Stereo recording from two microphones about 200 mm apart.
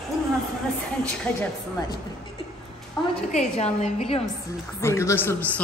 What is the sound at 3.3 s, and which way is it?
Speech, 35° left (ahead or behind).